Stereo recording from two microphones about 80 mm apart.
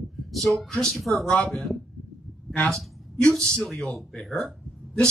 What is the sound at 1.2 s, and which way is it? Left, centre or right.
Speech, centre.